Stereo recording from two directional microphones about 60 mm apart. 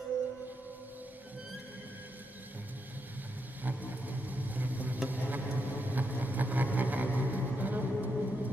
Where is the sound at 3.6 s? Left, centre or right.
Right.